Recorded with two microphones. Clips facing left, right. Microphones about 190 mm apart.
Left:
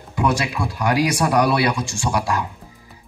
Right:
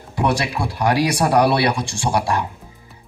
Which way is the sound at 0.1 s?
35° right (ahead or behind).